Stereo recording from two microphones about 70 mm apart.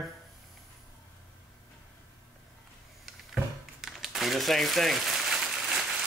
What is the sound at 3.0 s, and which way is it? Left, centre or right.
Crumpling, centre.